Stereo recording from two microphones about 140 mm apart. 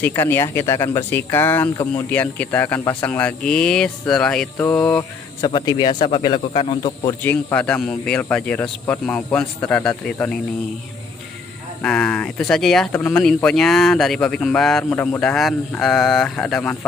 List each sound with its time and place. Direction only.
0.0 s speech: 15° left (ahead or behind)
5.4 s speech: 30° left (ahead or behind)
7.2 s speech: 10° left (ahead or behind)
11.8 s speech: 10° left (ahead or behind)